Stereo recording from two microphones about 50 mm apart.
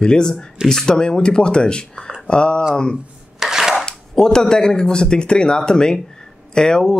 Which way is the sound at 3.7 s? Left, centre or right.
Centre.